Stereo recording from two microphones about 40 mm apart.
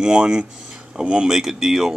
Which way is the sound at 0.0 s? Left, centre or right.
Right.